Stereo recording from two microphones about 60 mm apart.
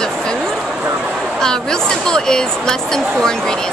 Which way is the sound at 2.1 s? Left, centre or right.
Centre.